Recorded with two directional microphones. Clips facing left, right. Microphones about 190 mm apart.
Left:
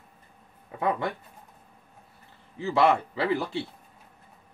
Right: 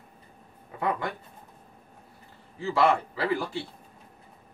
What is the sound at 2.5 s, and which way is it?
A man's voice, 20° left (ahead or behind).